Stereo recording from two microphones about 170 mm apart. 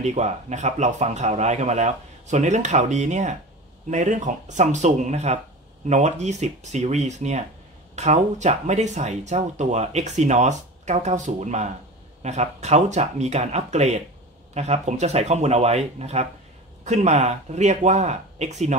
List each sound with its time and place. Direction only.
0.0 s speech: 40° right (ahead or behind)